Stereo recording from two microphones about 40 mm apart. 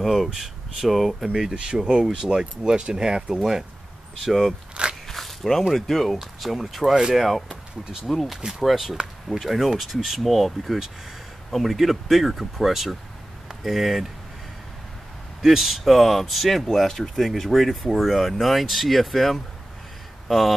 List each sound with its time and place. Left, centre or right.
0.0 s speech: centre
1.5 s speech: right
4.2 s speech: centre
5.0 s biting: centre
5.8 s speech: centre
6.2 s speech: centre
6.9 s speech: centre
7.2 s speech: centre
15.4 s speech: centre